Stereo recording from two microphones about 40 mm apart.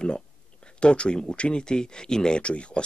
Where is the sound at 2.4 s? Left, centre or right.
Left.